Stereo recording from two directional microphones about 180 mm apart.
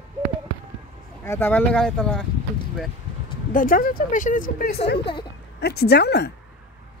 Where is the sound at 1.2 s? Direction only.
10° left (ahead or behind).